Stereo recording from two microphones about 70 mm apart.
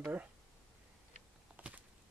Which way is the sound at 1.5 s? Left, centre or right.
Right.